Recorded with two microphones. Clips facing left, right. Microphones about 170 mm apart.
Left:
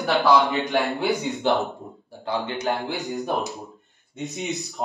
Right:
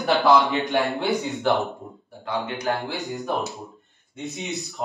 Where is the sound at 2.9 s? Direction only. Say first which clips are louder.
Left 1 dB; centre (ahead or behind).